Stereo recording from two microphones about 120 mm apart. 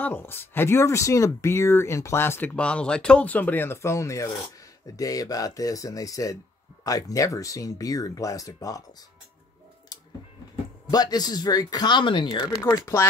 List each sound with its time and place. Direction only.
0.0 s speech: 20° left (ahead or behind)
10.5 s speech: 35° left (ahead or behind)
12.6 s speech: 25° left (ahead or behind)